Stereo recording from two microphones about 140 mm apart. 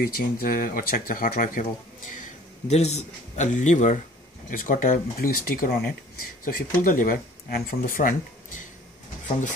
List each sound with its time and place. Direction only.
0.0 s speech: 90° left
2.7 s speech: 50° left (ahead or behind)
4.5 s speech: 75° left (ahead or behind)